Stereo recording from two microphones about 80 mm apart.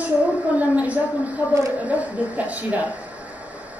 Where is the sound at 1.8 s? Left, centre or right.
Centre.